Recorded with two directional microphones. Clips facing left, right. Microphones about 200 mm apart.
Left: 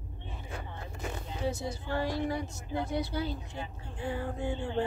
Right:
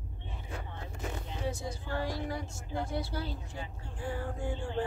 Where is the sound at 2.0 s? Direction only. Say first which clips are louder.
Left 5 dB; 20° left (ahead or behind).